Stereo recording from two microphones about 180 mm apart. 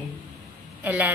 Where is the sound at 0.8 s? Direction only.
10° right (ahead or behind).